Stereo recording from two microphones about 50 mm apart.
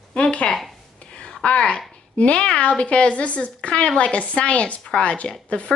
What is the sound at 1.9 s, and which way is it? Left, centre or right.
A woman's voice, left.